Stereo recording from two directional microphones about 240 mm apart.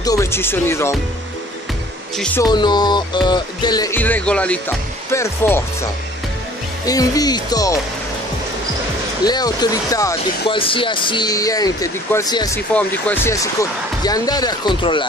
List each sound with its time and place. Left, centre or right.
0.0 s speech: centre
2.1 s speech: centre
2.4 s speech: centre
6.9 s speech: centre
9.2 s speech: centre